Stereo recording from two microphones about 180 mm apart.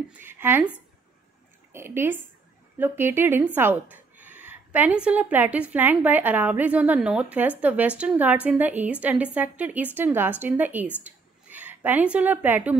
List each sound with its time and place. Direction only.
0.2 s speech: 10° right (ahead or behind)
1.7 s speech: 15° right (ahead or behind)
11.1 s a sound: 10° right (ahead or behind)